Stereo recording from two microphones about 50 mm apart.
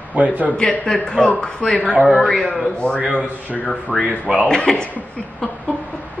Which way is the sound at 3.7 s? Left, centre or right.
Centre.